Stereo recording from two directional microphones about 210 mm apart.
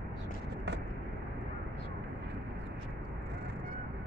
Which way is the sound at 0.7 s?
55° right (ahead or behind).